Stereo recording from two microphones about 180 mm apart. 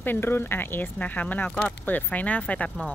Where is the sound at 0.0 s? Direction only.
10° left (ahead or behind).